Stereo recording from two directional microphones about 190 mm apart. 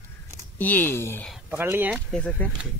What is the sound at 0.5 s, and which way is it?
Speech, 10° left (ahead or behind).